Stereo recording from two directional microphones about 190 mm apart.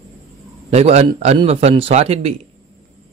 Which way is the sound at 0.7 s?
35° right (ahead or behind).